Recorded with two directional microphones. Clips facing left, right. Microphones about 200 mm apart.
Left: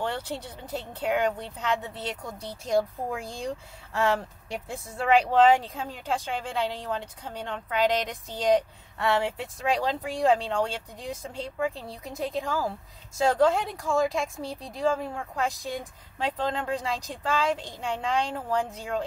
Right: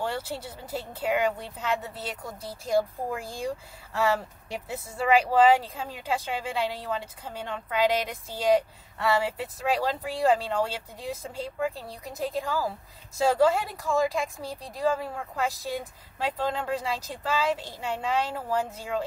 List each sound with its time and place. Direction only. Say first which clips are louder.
0.0 s speech: even; 5° right (ahead or behind)